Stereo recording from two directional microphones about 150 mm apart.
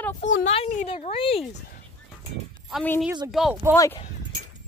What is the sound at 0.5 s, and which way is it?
Speech, 45° left (ahead or behind).